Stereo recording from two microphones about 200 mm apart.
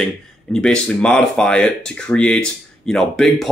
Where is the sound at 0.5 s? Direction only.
5° left (ahead or behind).